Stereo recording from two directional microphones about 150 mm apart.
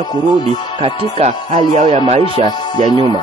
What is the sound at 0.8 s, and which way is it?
Speech, 45° right (ahead or behind).